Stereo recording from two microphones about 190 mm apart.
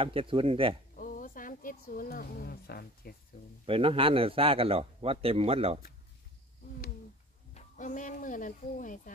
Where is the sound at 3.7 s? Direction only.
30° right (ahead or behind).